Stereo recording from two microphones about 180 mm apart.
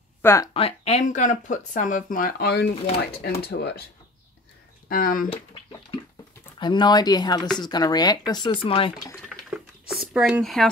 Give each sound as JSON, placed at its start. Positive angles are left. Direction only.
{"t": 0.2, "sound": "speech", "side_deg": 15}
{"t": 0.5, "sound": "speech", "side_deg": 30}
{"t": 4.8, "sound": "speech", "side_deg": 50}
{"t": 6.6, "sound": "speech", "side_deg": 25}
{"t": 10.1, "sound": "speech", "side_deg": -5}